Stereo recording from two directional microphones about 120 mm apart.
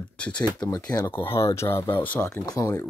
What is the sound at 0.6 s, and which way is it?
Speech, 30° left (ahead or behind).